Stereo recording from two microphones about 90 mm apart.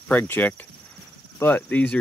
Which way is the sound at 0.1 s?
20° left (ahead or behind).